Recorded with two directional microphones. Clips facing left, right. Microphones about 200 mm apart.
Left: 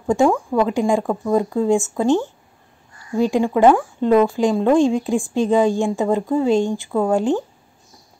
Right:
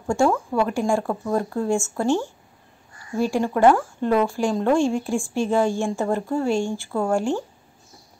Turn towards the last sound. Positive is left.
turn(degrees=20)  # may be behind; listen again after turning